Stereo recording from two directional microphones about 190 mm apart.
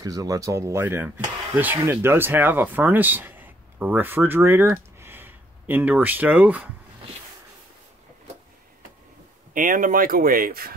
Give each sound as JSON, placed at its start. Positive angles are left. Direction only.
{"t": 0.0, "sound": "speech", "side_deg": -20}
{"t": 9.5, "sound": "speech", "side_deg": -45}